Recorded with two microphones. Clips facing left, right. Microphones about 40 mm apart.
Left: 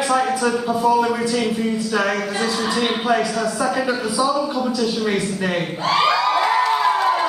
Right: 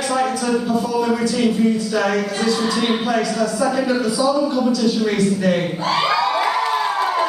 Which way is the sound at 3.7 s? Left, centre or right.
Centre.